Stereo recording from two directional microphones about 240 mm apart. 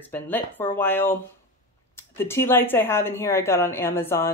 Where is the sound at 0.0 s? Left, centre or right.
Centre.